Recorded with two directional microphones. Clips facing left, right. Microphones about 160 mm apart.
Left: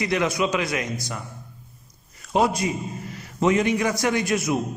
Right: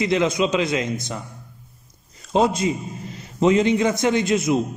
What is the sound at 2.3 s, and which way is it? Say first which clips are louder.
A man's voice: right 2 dB; 25° right (ahead or behind).